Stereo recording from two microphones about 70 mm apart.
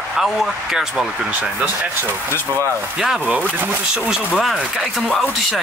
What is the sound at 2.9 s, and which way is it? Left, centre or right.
Speech, centre.